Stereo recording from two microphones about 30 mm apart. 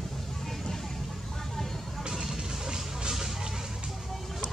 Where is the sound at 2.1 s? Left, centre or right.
Centre.